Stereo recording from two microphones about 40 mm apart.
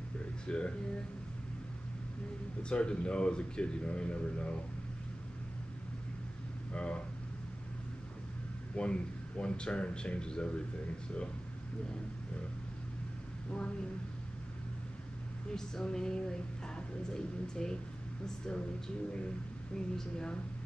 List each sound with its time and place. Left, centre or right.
0.5 s speech: left
2.7 s speech: left
6.7 s speech: left
8.7 s speech: left
15.5 s speech: centre
19.7 s speech: left